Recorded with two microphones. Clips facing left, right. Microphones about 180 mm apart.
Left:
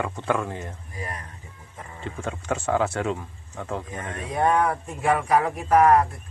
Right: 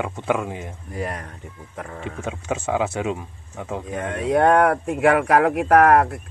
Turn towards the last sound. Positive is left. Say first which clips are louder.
# right 3 dB
turn(degrees=-65)  # may be behind; listen again after turning